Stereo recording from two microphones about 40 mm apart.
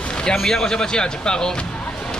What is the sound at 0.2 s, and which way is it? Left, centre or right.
Speech, centre.